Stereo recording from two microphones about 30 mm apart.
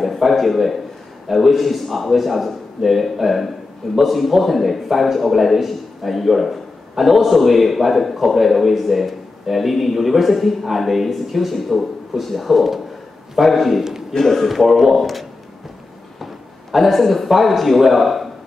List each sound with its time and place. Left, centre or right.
0.0 s a man's voice: centre
16.7 s a man's voice: centre